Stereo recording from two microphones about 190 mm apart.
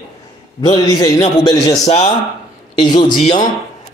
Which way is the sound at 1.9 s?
30° left (ahead or behind).